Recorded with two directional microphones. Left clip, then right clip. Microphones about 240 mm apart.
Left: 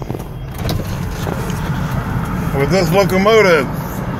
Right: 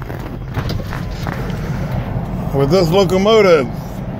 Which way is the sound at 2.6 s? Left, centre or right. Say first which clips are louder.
Right 1 dB; right.